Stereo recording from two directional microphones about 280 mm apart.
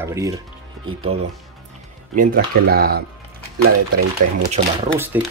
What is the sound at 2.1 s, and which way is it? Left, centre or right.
Speech, right.